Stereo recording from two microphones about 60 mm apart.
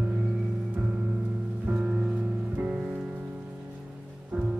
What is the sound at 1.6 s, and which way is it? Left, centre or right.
Music, right.